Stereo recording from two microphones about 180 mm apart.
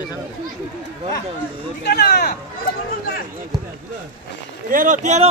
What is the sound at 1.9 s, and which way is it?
Speech, 60° left (ahead or behind).